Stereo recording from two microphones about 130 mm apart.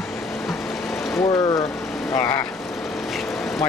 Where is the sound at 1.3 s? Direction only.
25° left (ahead or behind).